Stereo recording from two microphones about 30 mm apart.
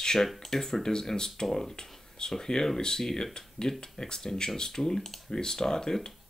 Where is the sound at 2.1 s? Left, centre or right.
Left.